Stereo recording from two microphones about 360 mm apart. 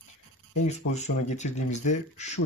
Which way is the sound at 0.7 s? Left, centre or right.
Centre.